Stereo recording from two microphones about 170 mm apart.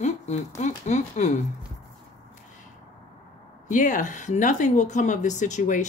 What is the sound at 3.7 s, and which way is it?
A woman's voice, 50° left (ahead or behind).